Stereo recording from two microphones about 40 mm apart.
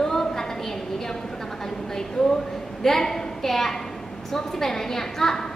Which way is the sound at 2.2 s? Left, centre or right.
Centre.